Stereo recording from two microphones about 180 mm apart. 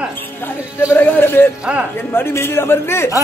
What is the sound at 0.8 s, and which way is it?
A man's voice, 10° left (ahead or behind).